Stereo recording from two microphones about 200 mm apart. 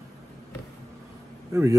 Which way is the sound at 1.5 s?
15° right (ahead or behind).